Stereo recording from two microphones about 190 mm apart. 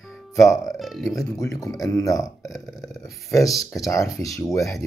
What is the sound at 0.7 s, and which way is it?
Speech, centre (ahead or behind).